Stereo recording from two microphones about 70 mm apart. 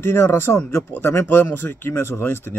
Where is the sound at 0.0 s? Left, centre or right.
Left.